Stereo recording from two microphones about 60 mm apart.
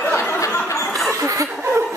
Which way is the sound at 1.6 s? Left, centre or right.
Right.